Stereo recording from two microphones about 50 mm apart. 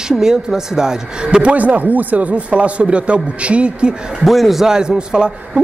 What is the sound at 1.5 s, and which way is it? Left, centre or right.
Speech, right.